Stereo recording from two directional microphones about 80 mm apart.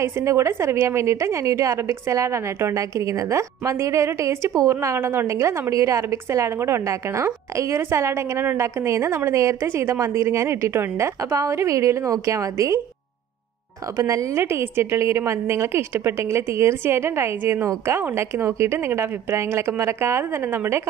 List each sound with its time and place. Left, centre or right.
0.0 s a woman's voice: right
13.9 s a woman's voice: right
14.4 s a woman's voice: right